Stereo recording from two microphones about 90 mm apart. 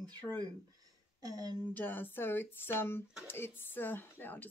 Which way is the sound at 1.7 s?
20° left (ahead or behind).